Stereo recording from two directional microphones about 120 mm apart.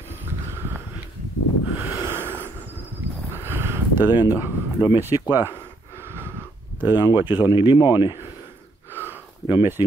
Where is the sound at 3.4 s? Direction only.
20° right (ahead or behind).